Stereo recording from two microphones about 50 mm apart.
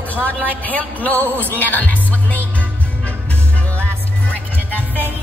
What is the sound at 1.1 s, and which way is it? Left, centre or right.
Music, right.